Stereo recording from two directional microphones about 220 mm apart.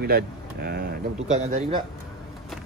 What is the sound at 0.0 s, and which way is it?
Speech, 45° right (ahead or behind).